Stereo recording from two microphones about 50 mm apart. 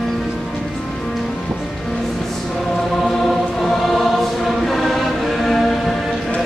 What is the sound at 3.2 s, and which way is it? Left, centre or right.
Choir, centre.